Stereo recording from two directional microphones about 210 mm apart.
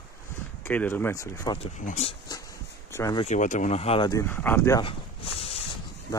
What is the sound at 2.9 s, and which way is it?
Speech, 15° left (ahead or behind).